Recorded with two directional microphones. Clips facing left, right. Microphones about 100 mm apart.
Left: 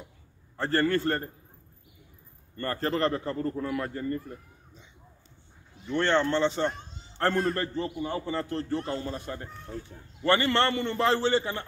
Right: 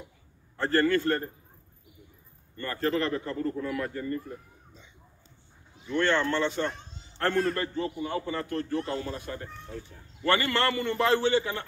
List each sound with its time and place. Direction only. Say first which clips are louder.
0.7 s a man's voice: right 1 dB; 35° left (ahead or behind)
2.5 s a man's voice: right 1 dB; 40° left (ahead or behind)
3.7 s a man's voice: left 1 dB; 30° left (ahead or behind)
5.9 s a man's voice: left 1 dB; 30° left (ahead or behind)